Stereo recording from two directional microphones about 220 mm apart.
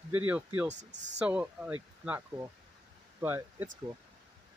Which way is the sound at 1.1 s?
5° right (ahead or behind).